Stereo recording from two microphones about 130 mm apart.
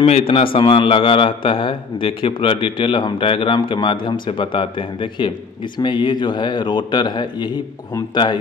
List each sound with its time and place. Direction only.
0.0 s a man's voice: 50° left (ahead or behind)